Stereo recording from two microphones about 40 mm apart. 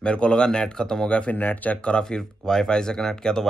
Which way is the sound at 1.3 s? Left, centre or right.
Left.